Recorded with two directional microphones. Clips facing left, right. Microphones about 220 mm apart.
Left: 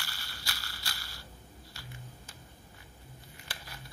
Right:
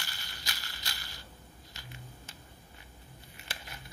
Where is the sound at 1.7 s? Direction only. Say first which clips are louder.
Even; 20° right (ahead or behind).